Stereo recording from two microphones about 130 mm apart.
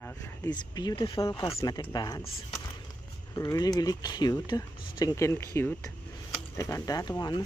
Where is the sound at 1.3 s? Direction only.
45° left (ahead or behind).